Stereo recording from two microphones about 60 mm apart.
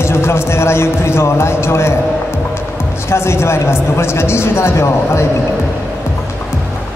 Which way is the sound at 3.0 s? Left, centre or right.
Left.